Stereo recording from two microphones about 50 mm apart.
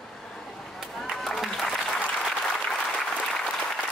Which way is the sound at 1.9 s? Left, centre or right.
Centre.